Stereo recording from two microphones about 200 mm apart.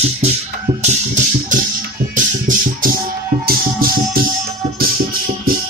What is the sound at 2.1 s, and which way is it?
Music, 45° right (ahead or behind).